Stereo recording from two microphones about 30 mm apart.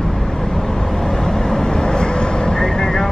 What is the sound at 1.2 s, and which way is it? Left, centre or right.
Vehicle, left.